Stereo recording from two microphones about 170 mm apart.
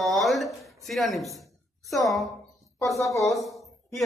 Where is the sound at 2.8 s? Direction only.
20° left (ahead or behind).